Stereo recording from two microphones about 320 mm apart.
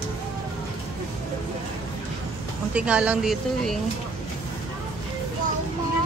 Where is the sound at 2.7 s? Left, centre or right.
Centre.